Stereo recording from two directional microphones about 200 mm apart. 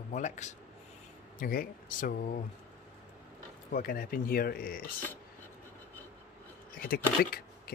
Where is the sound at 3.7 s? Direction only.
45° left (ahead or behind).